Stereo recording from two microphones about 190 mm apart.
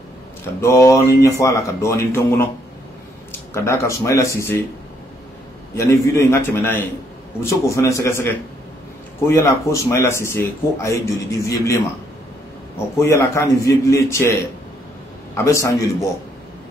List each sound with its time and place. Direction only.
0.6 s speech: 15° left (ahead or behind)
5.8 s speech: 15° left (ahead or behind)
12.9 s speech: 15° left (ahead or behind)
15.3 s speech: 15° left (ahead or behind)